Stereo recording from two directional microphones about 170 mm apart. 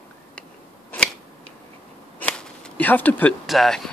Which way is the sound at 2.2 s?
5° left (ahead or behind).